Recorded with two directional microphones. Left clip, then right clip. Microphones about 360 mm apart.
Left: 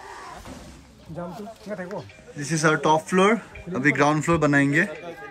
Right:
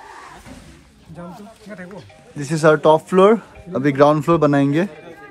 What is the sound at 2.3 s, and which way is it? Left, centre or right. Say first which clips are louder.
Speech: right 7 dB; centre.